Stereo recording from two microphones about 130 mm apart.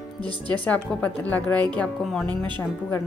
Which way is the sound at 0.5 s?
10° left (ahead or behind).